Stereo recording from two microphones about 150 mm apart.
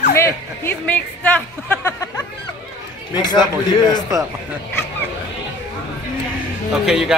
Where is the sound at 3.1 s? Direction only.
30° left (ahead or behind).